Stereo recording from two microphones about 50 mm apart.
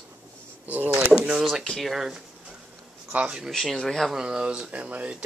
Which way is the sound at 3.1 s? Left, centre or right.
Right.